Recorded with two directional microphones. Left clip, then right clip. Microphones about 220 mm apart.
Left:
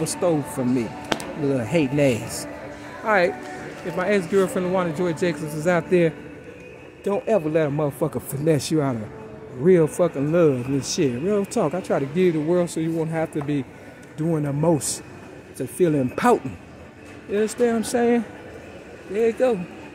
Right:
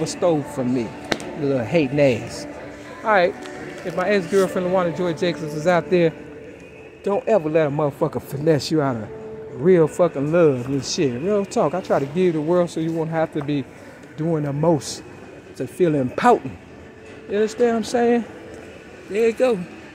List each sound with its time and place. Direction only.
0.0 s speech: 20° left (ahead or behind)
19.1 s speech: 5° right (ahead or behind)